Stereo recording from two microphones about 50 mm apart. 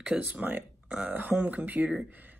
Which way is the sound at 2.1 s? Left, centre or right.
Right.